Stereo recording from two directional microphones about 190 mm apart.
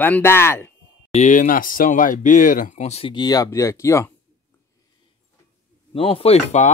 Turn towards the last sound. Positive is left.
turn(degrees=35)  # may be behind; listen again after turning